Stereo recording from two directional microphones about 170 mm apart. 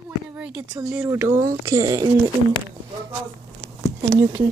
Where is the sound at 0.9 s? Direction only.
15° right (ahead or behind).